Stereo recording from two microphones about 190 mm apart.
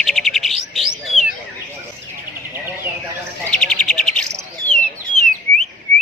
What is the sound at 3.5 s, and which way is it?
Bird, 5° left (ahead or behind).